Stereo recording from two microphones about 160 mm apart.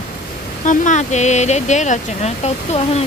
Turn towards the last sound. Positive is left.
turn(degrees=40)  # may be behind; listen again after turning